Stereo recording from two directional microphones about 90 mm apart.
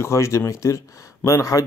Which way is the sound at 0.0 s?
35° left (ahead or behind).